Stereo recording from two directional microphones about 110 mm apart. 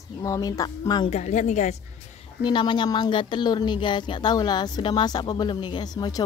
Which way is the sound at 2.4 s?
45° left (ahead or behind).